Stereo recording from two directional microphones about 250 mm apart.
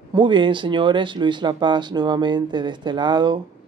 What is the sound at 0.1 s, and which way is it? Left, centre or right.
Speech, centre.